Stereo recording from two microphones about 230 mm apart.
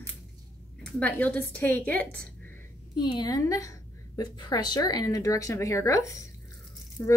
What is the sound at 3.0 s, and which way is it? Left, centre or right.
Speech, centre.